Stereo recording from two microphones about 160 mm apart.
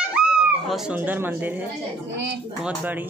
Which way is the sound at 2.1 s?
90° right.